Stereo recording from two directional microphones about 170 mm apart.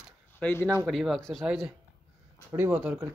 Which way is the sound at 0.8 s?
Centre (ahead or behind).